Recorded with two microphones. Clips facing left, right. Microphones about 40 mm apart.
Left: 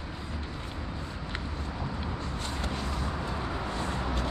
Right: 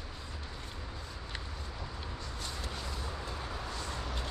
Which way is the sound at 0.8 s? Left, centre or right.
Left.